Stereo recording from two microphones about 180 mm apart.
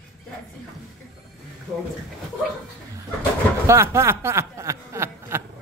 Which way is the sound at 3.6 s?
15° right (ahead or behind).